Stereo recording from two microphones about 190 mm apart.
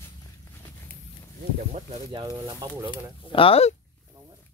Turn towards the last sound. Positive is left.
turn(degrees=30)  # may be behind; listen again after turning